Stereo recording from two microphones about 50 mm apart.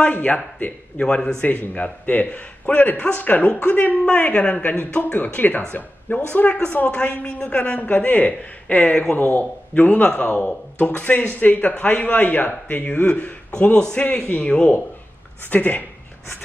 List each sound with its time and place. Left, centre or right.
0.0 s a man's voice: left
1.0 s a woman's voice: centre
1.4 s a man's voice: left
6.9 s a woman's voice: centre
7.9 s a man's voice: left